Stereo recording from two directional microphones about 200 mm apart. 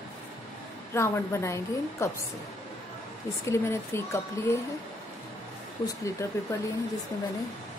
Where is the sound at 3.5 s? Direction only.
15° left (ahead or behind).